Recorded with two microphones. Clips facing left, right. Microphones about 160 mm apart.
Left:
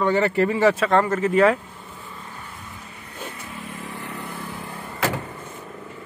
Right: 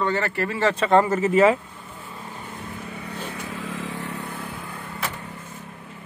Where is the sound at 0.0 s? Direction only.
15° left (ahead or behind).